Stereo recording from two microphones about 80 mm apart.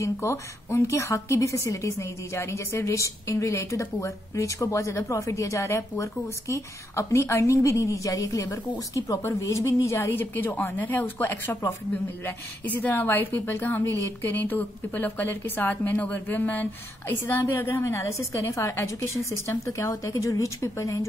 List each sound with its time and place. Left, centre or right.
0.0 s a woman's voice: left
12.6 s a woman's voice: left